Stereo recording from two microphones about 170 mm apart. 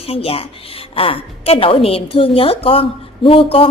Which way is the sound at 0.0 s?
35° left (ahead or behind).